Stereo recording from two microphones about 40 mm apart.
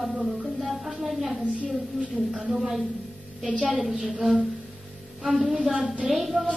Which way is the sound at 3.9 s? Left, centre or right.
Centre.